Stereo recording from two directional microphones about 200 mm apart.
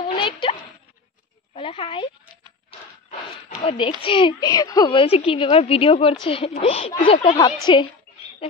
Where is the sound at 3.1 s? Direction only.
35° left (ahead or behind).